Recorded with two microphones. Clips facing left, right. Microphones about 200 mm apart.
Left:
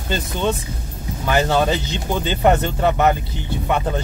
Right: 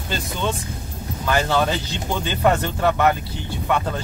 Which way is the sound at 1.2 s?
15° left (ahead or behind).